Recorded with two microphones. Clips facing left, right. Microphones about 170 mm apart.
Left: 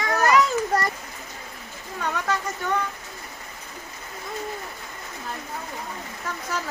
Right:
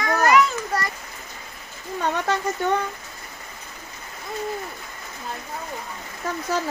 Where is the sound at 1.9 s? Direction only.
25° right (ahead or behind).